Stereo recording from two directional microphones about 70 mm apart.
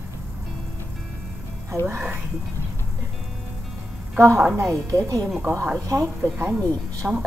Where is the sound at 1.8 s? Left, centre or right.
Right.